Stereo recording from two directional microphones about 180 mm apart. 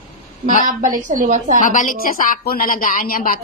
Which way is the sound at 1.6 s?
45° left (ahead or behind).